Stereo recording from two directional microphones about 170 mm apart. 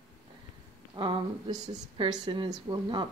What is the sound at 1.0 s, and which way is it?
Speech, 30° right (ahead or behind).